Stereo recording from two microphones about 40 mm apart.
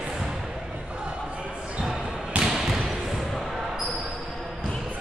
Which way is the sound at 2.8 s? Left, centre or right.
Centre.